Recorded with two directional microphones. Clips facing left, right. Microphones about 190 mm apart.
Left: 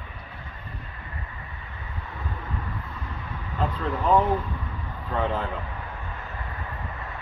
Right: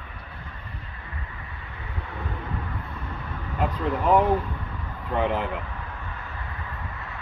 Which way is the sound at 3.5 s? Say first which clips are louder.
Right 2 dB; 15° right (ahead or behind).